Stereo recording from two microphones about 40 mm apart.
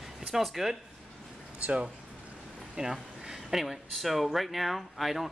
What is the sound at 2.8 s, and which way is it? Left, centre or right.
Speech, right.